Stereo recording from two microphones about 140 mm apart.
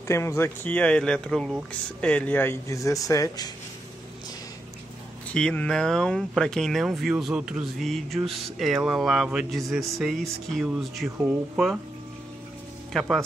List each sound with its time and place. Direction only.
0.1 s speech: 20° left (ahead or behind)
5.3 s speech: 10° left (ahead or behind)
11.1 s speech: 15° right (ahead or behind)
12.9 s speech: centre (ahead or behind)